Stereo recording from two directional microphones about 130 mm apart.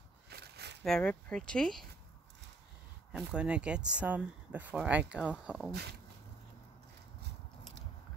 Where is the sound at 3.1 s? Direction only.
5° right (ahead or behind).